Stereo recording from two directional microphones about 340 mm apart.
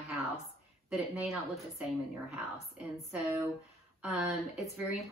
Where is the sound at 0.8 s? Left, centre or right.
Centre.